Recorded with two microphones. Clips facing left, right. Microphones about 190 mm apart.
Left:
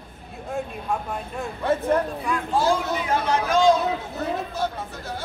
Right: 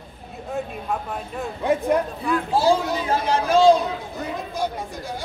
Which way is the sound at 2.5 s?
35° right (ahead or behind).